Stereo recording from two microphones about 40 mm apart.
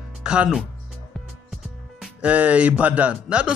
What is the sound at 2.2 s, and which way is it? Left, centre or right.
Speech, right.